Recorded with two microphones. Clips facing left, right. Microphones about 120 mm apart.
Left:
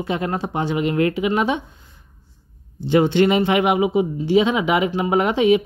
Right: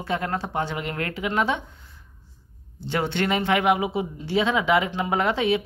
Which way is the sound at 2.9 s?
15° left (ahead or behind).